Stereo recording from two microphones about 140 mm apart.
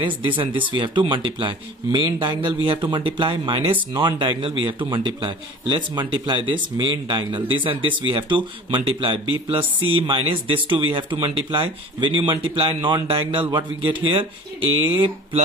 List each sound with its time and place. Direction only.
0.0 s speech: 35° right (ahead or behind)